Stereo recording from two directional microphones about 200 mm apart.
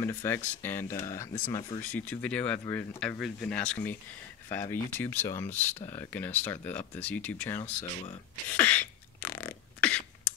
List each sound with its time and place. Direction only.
0.0 s speech: 10° left (ahead or behind)
1.8 s speech: 10° left (ahead or behind)
8.5 s beatboxing: 5° left (ahead or behind)